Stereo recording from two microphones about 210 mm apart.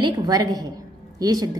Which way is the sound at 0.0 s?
20° right (ahead or behind).